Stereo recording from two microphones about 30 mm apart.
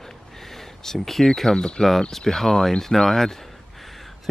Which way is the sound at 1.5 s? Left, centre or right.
Left.